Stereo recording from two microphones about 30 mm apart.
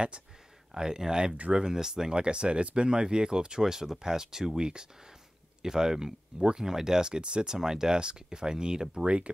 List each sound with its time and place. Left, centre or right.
0.7 s speech: right
8.9 s speech: right